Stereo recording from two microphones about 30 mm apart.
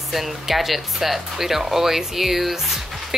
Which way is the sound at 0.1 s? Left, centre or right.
Centre.